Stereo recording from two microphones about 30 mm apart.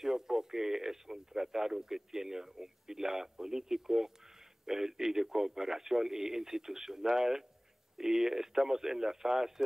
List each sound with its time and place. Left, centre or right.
0.0 s speech: centre